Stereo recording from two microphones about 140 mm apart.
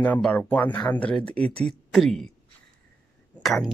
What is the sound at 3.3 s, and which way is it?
Speech, centre (ahead or behind).